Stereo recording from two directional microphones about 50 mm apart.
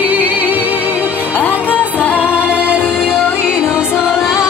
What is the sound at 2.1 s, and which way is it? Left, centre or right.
Music, right.